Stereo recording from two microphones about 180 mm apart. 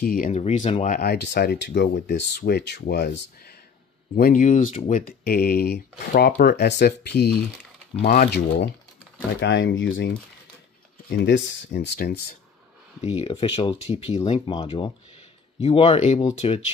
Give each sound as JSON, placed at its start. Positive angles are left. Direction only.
{"t": 0.0, "sound": "speech", "side_deg": 50}
{"t": 1.1, "sound": "speech", "side_deg": 70}
{"t": 4.1, "sound": "speech", "side_deg": 50}
{"t": 5.2, "sound": "speech", "side_deg": 60}
{"t": 8.0, "sound": "speech", "side_deg": 55}
{"t": 9.4, "sound": "speech", "side_deg": 90}
{"t": 11.1, "sound": "speech", "side_deg": 70}
{"t": 13.0, "sound": "speech", "side_deg": 35}